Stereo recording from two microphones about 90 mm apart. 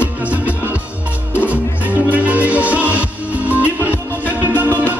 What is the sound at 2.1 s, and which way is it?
Music, 15° right (ahead or behind).